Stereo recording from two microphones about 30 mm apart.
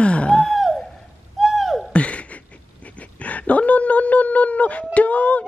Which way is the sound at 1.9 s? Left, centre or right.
Left.